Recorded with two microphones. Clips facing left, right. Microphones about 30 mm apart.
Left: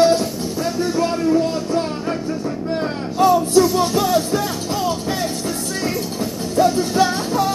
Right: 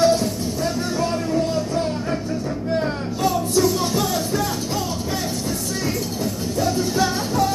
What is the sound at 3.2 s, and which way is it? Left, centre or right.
Music, centre.